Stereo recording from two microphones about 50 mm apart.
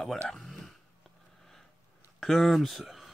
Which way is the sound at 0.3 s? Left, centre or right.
Centre.